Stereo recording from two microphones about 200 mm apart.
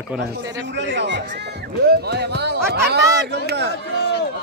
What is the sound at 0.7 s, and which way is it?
Chatter, 60° right (ahead or behind).